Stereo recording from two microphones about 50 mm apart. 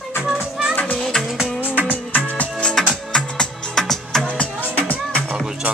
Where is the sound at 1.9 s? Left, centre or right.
Left.